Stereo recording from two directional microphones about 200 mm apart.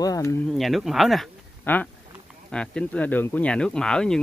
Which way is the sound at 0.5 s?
Centre (ahead or behind).